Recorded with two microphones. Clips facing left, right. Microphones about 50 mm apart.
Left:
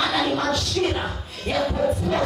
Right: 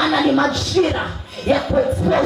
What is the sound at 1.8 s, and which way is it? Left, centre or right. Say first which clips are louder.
Speech: right 6 dB; right.